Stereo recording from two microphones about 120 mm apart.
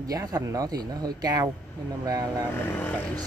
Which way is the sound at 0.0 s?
30° right (ahead or behind).